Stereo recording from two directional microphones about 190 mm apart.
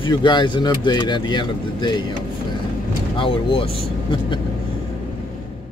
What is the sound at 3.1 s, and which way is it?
Speech, 30° left (ahead or behind).